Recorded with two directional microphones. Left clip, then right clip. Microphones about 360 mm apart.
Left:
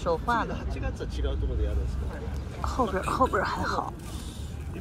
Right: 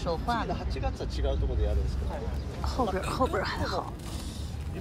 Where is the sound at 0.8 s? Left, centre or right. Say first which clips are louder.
Right 3 dB; right.